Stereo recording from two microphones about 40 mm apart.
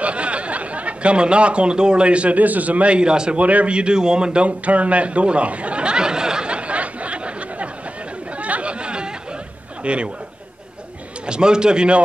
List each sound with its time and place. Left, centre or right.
0.0 s speech: right
3.3 s speech: right
3.7 s a sound: right
8.4 s chatter: right
9.8 s speech: right
11.2 s speech: right